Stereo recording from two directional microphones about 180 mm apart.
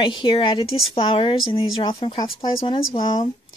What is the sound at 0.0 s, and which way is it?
Speech, 25° left (ahead or behind).